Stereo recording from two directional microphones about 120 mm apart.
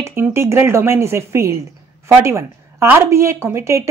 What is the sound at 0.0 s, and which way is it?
A woman's voice, 20° right (ahead or behind).